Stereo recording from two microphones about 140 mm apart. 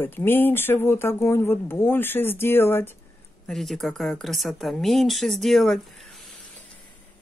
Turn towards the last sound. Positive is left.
turn(degrees=0)  # may be behind; listen again after turning